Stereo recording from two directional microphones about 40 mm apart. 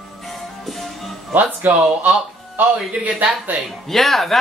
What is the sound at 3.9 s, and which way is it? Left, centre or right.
Speech, centre.